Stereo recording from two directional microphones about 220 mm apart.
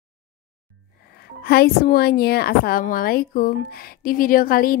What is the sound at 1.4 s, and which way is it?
A woman's voice, 45° left (ahead or behind).